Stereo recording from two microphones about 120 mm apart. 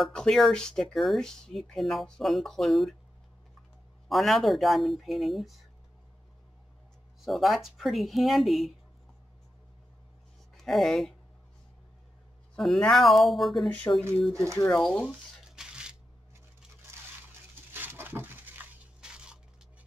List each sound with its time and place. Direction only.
0.0 s speech: 5° left (ahead or behind)
4.1 s speech: centre (ahead or behind)
7.2 s speech: centre (ahead or behind)
10.5 s speech: centre (ahead or behind)
12.5 s speech: centre (ahead or behind)
13.9 s speech: 20° left (ahead or behind)
14.3 s speech: 25° right (ahead or behind)
14.7 s speech: 5° left (ahead or behind)
15.4 s a sound: 5° right (ahead or behind)
17.8 s a sound: 15° right (ahead or behind)